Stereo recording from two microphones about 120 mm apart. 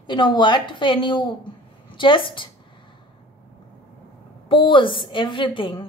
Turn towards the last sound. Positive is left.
turn(degrees=45)  # may be behind; listen again after turning